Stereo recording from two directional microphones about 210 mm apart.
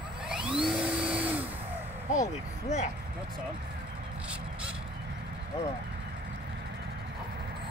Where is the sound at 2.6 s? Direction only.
35° left (ahead or behind).